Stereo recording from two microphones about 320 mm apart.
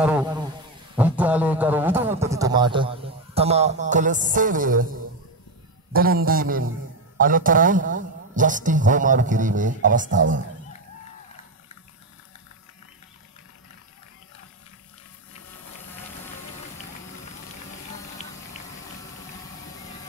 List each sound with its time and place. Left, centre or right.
0.0 s speech: centre
0.9 s a sound: centre; by 4.8 s right
5.9 s a man's voice: right